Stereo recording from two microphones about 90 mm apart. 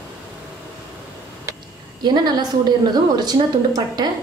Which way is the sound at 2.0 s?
50° right (ahead or behind).